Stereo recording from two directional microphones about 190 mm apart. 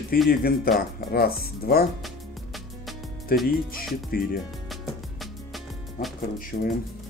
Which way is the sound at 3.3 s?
50° left (ahead or behind).